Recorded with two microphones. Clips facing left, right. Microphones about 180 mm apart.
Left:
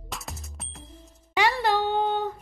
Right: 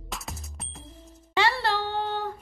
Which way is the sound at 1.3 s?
15° left (ahead or behind).